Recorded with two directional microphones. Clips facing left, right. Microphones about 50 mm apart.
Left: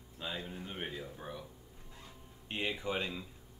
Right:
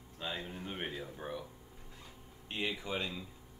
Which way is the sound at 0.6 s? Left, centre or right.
Centre.